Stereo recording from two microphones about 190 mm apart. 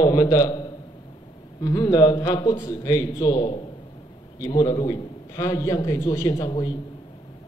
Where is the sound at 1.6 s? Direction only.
20° left (ahead or behind).